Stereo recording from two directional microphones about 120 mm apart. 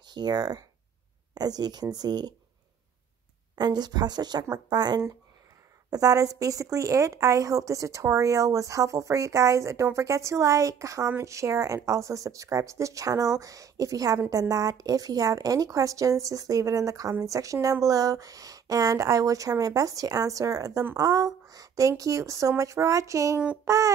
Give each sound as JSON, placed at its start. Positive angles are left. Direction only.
{"t": 0.1, "sound": "speech", "side_deg": -35}
{"t": 3.5, "sound": "a woman's voice", "side_deg": -35}